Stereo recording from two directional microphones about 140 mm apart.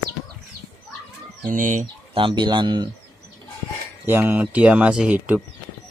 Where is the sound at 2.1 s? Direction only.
35° right (ahead or behind).